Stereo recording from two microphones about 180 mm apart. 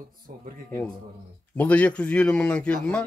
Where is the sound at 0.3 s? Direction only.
45° right (ahead or behind).